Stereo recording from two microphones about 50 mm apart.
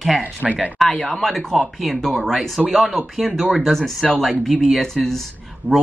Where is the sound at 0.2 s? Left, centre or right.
Right.